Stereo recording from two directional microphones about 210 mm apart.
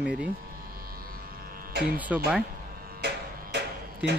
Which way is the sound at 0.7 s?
45° right (ahead or behind).